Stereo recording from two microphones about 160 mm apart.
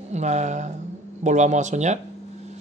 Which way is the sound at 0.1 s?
45° right (ahead or behind).